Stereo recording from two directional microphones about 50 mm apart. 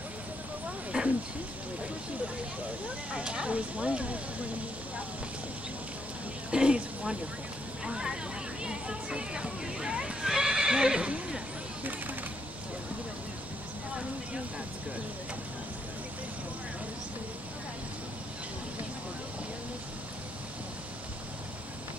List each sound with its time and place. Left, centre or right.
0.9 s speech: right
3.1 s speech: right
6.5 s a sound: centre
7.8 s speech: centre
8.6 s a sound: centre
10.2 s neigh: centre